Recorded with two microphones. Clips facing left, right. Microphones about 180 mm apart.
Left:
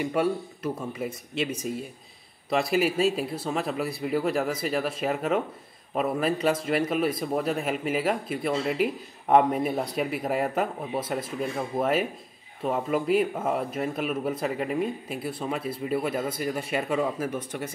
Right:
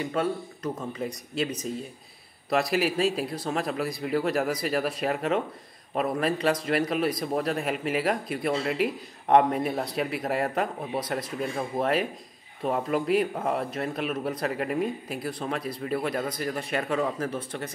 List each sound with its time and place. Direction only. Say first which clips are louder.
0.0 s speech: left 2 dB; 10° left (ahead or behind)